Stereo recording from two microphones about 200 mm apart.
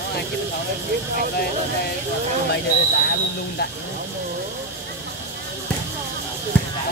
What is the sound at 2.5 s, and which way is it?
Speech, 55° left (ahead or behind).